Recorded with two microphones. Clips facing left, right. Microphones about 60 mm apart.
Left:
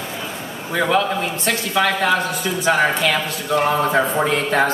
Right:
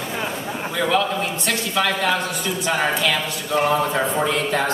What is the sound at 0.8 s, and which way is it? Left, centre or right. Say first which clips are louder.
Speech: left 2 dB; centre.